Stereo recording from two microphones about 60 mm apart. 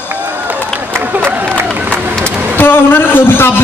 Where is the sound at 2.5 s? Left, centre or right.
Left.